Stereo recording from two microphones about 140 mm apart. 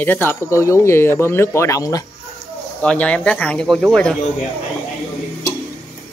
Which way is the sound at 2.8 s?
10° left (ahead or behind).